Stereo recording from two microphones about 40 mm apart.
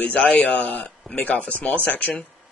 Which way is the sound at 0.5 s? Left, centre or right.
Centre.